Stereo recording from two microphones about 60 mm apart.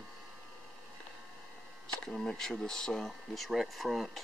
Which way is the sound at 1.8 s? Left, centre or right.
Centre.